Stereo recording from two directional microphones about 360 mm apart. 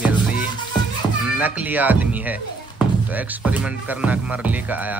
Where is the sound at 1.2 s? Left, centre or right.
Centre.